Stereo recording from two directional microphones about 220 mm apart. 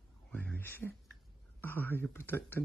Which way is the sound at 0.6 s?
10° left (ahead or behind).